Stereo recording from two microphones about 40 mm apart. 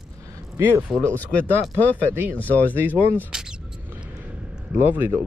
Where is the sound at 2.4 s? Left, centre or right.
Left.